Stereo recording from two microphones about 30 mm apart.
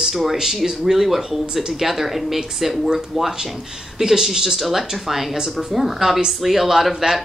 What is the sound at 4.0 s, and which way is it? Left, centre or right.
Speech, centre.